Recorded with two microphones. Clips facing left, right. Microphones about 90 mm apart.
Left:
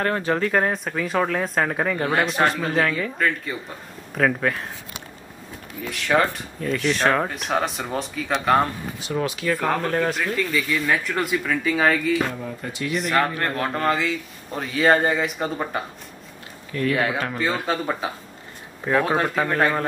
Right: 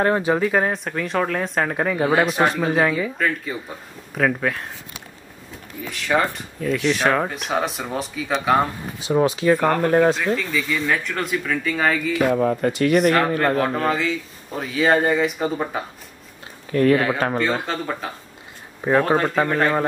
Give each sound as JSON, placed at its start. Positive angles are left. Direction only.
{"t": 0.0, "sound": "speech", "side_deg": -15}
{"t": 5.8, "sound": "speech", "side_deg": 0}
{"t": 9.0, "sound": "speech", "side_deg": -25}
{"t": 9.6, "sound": "speech", "side_deg": 0}
{"t": 9.8, "sound": "speech", "side_deg": -20}
{"t": 10.3, "sound": "speech", "side_deg": 0}
{"t": 12.3, "sound": "speech", "side_deg": -60}
{"t": 13.6, "sound": "speech", "side_deg": 0}
{"t": 16.9, "sound": "speech", "side_deg": 0}
{"t": 18.9, "sound": "speech", "side_deg": -10}